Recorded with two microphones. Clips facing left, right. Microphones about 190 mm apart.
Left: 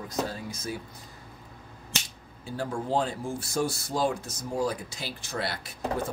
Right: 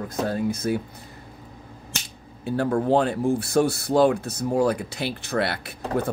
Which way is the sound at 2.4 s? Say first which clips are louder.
Right 10 dB; 65° right (ahead or behind).